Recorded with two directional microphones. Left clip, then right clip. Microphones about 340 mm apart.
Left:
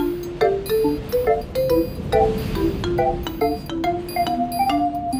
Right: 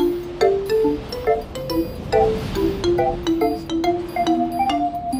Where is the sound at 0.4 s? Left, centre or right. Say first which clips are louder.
Right 1 dB; centre.